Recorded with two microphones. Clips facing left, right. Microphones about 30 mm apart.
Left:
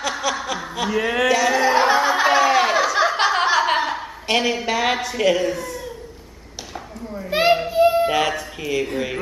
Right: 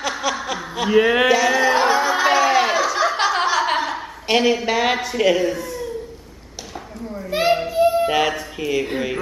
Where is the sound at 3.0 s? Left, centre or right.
Centre.